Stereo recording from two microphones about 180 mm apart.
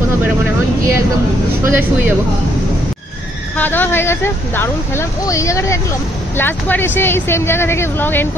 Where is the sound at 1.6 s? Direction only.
10° right (ahead or behind).